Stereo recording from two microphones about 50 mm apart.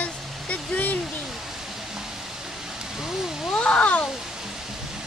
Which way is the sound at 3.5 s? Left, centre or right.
Left.